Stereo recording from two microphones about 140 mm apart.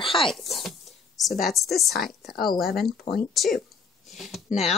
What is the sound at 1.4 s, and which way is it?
A woman's voice, centre (ahead or behind).